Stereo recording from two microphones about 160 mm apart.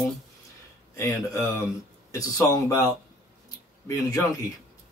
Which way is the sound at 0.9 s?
20° left (ahead or behind).